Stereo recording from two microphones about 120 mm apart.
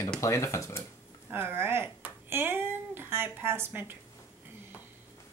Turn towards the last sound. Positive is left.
turn(degrees=-20)  # may be behind; listen again after turning